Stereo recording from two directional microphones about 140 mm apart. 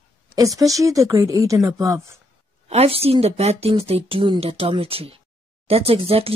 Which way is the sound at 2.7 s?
45° right (ahead or behind).